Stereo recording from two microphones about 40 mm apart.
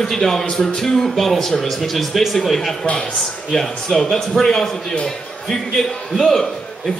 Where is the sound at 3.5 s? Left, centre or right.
Centre.